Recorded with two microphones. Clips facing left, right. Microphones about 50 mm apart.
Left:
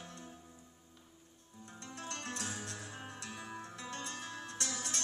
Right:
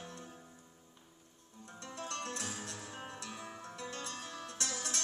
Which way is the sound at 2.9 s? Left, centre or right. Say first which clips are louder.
Right 1 dB; right.